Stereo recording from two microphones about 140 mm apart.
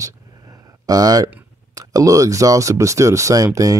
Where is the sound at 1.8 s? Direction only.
25° right (ahead or behind).